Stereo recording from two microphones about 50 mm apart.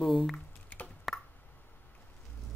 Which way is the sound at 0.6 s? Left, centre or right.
Left.